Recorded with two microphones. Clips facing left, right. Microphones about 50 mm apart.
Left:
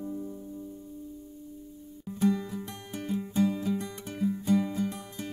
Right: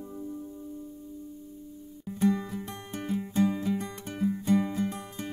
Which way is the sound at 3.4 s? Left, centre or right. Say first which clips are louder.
Right 1 dB; right.